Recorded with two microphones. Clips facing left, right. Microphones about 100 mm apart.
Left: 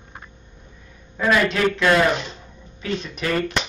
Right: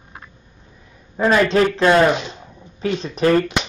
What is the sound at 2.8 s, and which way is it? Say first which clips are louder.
Speech: right 8 dB; 35° right (ahead or behind).